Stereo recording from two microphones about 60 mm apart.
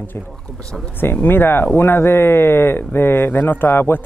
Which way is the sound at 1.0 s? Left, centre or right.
Left.